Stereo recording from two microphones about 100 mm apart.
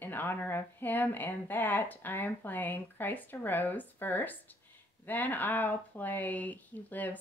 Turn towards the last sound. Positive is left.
turn(degrees=15)  # may be behind; listen again after turning